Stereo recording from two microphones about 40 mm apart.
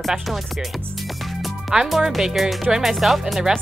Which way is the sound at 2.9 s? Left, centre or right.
Centre.